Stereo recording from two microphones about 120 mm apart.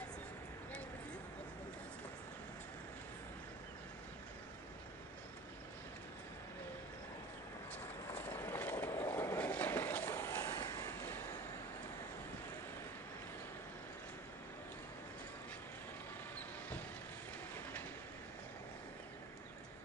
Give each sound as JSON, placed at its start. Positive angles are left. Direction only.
{"t": 8.3, "sound": "vehicle", "side_deg": 20}